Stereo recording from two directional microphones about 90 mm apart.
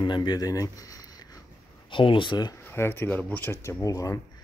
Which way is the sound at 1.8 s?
65° left (ahead or behind).